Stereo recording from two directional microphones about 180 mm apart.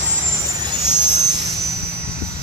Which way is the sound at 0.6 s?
20° right (ahead or behind).